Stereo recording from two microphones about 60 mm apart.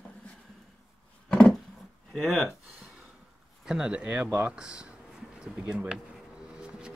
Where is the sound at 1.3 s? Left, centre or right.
Centre.